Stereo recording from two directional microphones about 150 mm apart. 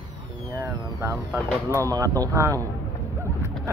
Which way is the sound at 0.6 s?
15° right (ahead or behind).